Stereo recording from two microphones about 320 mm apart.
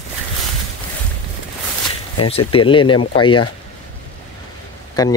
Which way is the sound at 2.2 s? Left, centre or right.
Centre.